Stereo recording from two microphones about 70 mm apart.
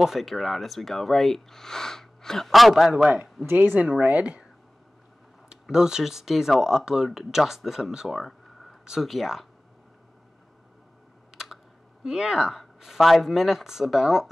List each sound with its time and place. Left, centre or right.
0.0 s speech: centre
3.4 s speech: right
5.5 s speech: centre
11.3 s speech: centre